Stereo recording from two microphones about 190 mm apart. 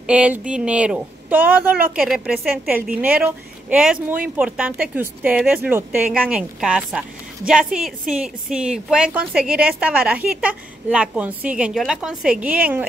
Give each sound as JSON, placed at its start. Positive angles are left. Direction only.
{"t": 0.0, "sound": "speech", "side_deg": -5}